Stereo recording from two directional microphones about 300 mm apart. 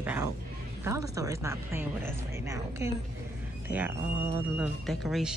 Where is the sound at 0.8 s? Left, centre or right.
Centre.